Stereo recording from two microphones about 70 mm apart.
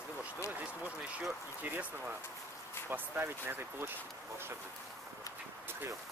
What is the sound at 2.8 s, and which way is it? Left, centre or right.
Speech, right.